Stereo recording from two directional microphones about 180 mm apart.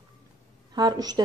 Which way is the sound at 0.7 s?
20° right (ahead or behind).